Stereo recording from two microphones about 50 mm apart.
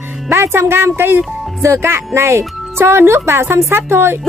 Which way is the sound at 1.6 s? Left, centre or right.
Right.